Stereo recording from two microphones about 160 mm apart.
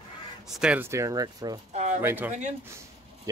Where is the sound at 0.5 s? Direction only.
5° right (ahead or behind); by 1.6 s 25° right (ahead or behind).